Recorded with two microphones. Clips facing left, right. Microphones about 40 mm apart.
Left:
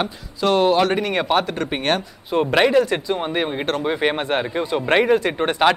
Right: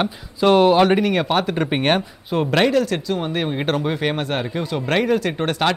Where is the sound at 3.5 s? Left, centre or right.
Centre.